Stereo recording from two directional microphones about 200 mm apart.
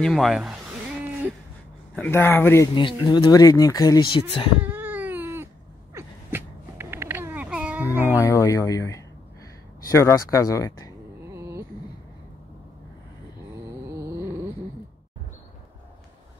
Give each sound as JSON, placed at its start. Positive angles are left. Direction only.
{"t": 0.0, "sound": "speech", "side_deg": 0}
{"t": 2.0, "sound": "speech", "side_deg": 10}
{"t": 4.6, "sound": "cat", "side_deg": -10}
{"t": 5.9, "sound": "a sound", "side_deg": -10}
{"t": 8.2, "sound": "speech", "side_deg": 10}
{"t": 11.3, "sound": "a sound", "side_deg": -15}
{"t": 13.8, "sound": "music", "side_deg": -15}